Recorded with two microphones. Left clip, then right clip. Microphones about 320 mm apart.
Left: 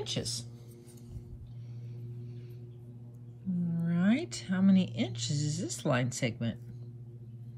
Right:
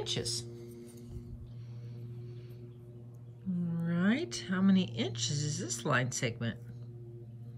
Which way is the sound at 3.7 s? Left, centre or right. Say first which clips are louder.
Left 1 dB; centre.